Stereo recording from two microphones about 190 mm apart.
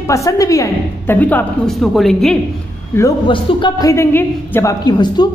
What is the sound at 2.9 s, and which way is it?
A woman's voice, 20° left (ahead or behind).